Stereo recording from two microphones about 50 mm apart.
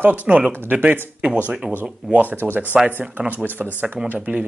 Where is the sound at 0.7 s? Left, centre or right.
Right.